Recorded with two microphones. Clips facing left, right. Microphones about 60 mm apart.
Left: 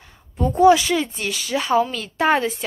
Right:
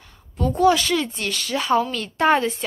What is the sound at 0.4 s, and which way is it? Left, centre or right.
A woman's voice, centre.